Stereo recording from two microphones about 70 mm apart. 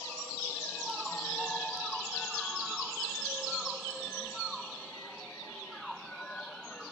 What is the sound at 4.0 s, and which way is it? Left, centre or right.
Music, left.